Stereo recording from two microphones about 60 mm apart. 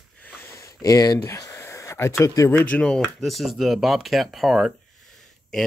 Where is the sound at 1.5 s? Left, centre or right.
Left.